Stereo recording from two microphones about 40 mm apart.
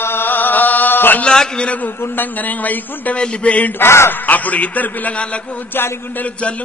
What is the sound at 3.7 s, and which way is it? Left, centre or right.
Speech, left.